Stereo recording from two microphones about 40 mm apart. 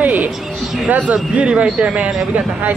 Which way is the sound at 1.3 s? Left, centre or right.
Right.